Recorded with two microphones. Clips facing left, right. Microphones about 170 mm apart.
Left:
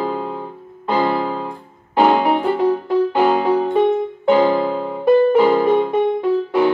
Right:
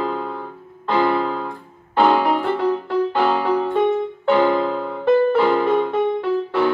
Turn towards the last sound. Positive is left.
turn(degrees=15)  # may be behind; listen again after turning